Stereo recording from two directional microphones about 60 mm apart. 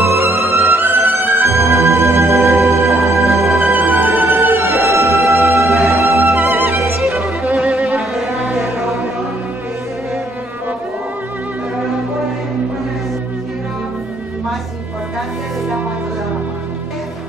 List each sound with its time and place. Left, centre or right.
0.0 s music: right
3.7 s music: right
7.4 s music: centre